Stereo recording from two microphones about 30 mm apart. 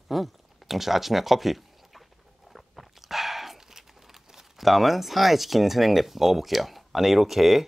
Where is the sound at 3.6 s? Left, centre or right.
Centre.